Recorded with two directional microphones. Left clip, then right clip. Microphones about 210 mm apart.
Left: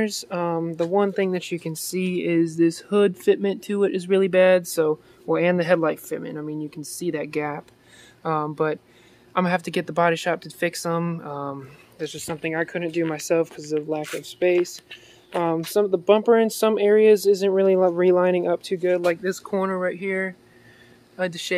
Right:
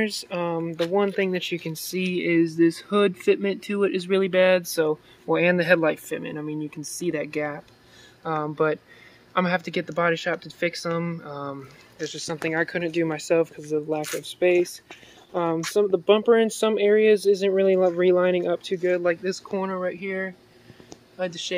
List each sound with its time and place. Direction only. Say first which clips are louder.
0.0 s speech: left 1 dB; 10° left (ahead or behind); by 6.8 s 10° right (ahead or behind)
7.2 s speech: left 3 dB; 15° left (ahead or behind)
8.5 s speech: right 1 dB; centre (ahead or behind)
21.2 s speech: left 3 dB; 30° left (ahead or behind)